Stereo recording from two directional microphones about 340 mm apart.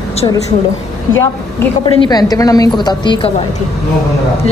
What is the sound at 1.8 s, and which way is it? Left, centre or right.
A woman's voice, centre.